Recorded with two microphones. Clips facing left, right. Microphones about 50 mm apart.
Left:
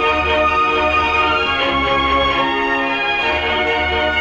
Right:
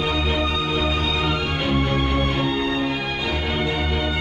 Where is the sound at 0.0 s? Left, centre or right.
Left.